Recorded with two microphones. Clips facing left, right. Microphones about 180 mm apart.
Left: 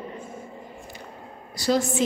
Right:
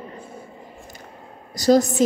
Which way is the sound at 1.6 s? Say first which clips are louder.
Right 7 dB; 40° right (ahead or behind).